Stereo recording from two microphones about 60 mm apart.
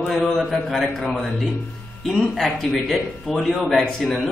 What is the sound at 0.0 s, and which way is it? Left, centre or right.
A man's voice, centre.